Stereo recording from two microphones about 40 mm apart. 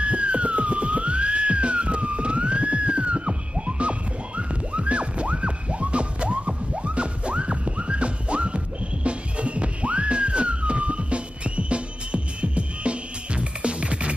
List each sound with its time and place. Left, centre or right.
0.0 s music: right